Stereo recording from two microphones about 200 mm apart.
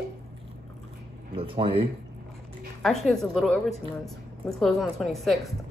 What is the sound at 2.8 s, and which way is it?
A woman's voice, centre (ahead or behind).